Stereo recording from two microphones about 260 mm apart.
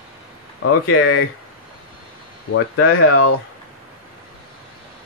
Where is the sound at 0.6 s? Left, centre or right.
Left.